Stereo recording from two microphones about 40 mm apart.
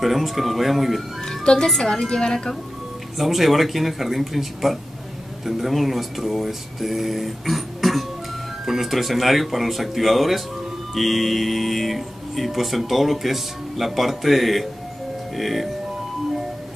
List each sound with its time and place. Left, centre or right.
0.0 s speech: centre
1.2 s a woman's voice: centre
2.0 s speech: centre
3.2 s speech: centre